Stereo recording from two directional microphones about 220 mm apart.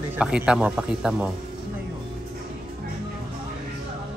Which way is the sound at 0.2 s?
5° right (ahead or behind).